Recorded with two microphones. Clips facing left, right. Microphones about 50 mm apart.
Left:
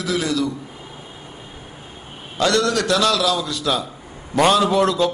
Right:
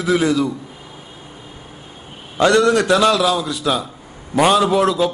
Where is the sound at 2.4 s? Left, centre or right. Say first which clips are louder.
Right 5 dB; right.